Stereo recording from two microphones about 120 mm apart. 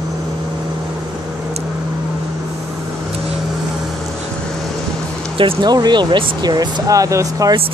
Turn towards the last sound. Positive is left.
turn(degrees=-30)  # may be behind; listen again after turning